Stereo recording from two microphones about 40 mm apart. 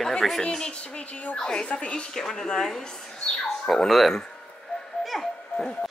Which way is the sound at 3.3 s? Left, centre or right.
Left.